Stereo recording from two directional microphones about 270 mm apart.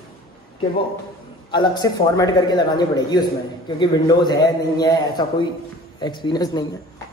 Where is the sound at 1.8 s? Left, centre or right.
Centre.